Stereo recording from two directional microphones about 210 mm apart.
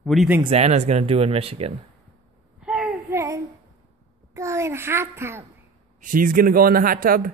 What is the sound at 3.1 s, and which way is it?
Child singing, 15° right (ahead or behind).